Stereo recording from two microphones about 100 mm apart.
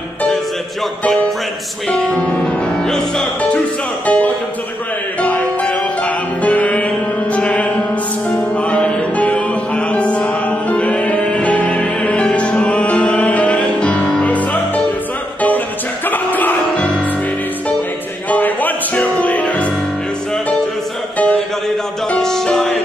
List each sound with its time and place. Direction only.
1.9 s music: 5° left (ahead or behind)
8.6 s music: 10° left (ahead or behind)
16.1 s music: 20° left (ahead or behind)
18.3 s music: 15° left (ahead or behind)
22.1 s music: 5° left (ahead or behind)